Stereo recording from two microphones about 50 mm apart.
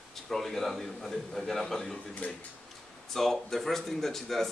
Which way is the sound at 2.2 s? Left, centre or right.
Left.